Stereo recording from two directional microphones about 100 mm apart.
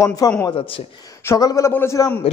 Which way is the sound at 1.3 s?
35° left (ahead or behind).